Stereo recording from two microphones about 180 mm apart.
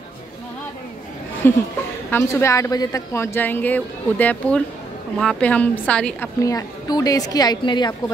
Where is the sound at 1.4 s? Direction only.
10° left (ahead or behind).